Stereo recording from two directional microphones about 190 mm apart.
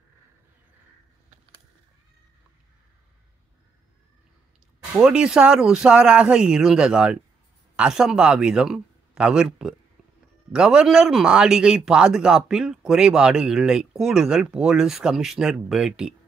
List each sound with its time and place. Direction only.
4.9 s speech: 5° right (ahead or behind)